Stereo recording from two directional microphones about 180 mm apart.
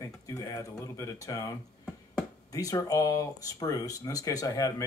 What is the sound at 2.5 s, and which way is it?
Speech, 20° left (ahead or behind).